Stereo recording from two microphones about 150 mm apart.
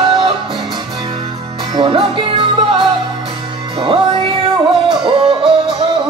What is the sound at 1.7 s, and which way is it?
Music, 35° right (ahead or behind).